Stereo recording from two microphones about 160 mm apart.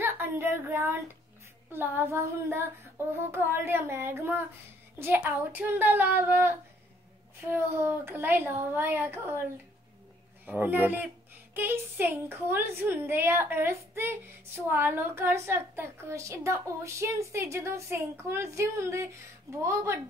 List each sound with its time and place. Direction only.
0.0 s a sound: 15° right (ahead or behind)
1.7 s a child's voice: 15° right (ahead or behind)
10.4 s a child's voice: 10° right (ahead or behind)